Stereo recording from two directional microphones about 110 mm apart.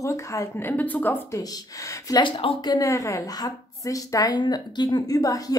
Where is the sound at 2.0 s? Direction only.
40° left (ahead or behind).